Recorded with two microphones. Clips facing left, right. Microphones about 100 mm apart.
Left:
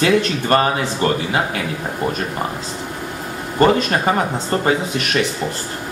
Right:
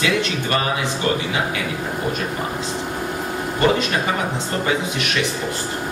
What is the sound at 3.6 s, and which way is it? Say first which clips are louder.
Speech: left 4 dB; 40° left (ahead or behind).